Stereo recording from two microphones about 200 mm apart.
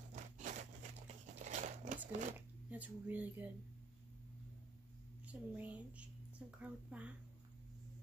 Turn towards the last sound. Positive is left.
turn(degrees=-5)  # may be behind; listen again after turning